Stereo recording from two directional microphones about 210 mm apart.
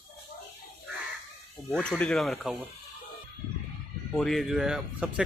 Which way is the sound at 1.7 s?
5° left (ahead or behind).